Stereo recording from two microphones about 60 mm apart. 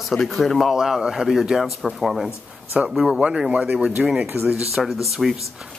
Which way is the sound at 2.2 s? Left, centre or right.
Right.